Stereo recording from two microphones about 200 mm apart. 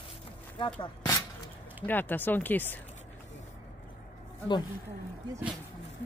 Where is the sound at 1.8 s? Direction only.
10° left (ahead or behind).